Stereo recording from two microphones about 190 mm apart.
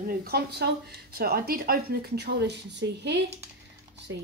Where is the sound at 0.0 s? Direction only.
50° right (ahead or behind).